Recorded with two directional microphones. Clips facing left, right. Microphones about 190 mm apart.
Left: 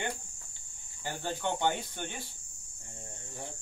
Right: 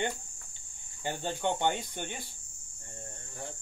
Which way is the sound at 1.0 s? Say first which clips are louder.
Right 2 dB; 20° right (ahead or behind).